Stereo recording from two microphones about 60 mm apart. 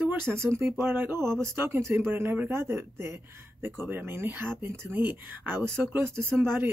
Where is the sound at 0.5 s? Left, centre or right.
Right.